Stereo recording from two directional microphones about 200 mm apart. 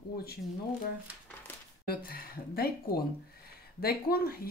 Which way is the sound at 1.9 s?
50° left (ahead or behind).